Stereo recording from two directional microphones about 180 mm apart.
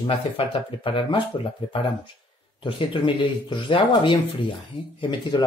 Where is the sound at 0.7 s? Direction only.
30° left (ahead or behind).